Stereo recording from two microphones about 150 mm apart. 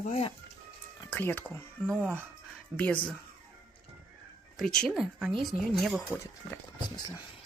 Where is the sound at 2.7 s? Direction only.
10° left (ahead or behind).